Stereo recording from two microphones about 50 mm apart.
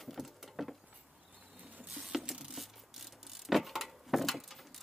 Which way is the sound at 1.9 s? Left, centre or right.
Centre.